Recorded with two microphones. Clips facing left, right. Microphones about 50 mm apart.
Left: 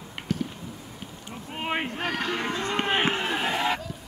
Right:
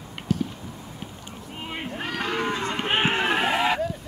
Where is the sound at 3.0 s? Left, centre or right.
Right.